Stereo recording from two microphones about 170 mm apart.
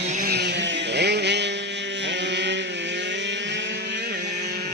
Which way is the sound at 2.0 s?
90° right.